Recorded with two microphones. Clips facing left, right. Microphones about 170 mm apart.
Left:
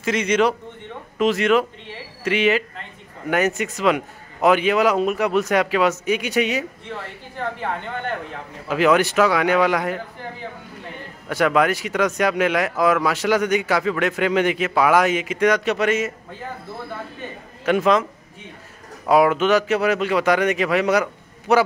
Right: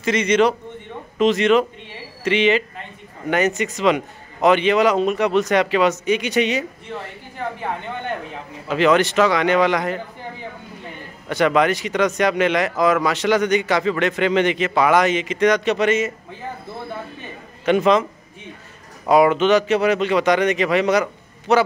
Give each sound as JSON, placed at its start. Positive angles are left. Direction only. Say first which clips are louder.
{"t": 0.0, "sound": "speech", "louder": "right 2 dB", "side_deg": 5}
{"t": 8.6, "sound": "speech", "louder": "right 1 dB", "side_deg": 5}
{"t": 11.2, "sound": "speech", "louder": "right 1 dB", "side_deg": 5}
{"t": 17.6, "sound": "speech", "louder": "right 2 dB", "side_deg": 0}
{"t": 19.0, "sound": "speech", "louder": "right 2 dB", "side_deg": 5}